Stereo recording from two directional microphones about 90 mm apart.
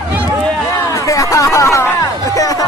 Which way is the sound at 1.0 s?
35° left (ahead or behind).